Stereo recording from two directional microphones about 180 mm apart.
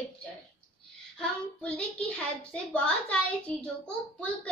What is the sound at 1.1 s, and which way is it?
A child's voice, 5° left (ahead or behind).